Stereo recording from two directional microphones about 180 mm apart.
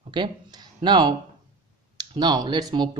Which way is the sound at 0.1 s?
25° right (ahead or behind).